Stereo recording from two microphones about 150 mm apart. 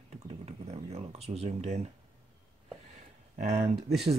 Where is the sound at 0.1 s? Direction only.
45° right (ahead or behind).